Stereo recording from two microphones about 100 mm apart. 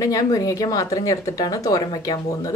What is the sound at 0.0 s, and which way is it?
Speech, 35° left (ahead or behind).